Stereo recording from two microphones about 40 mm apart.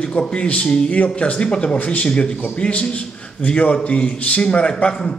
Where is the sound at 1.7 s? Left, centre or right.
Left.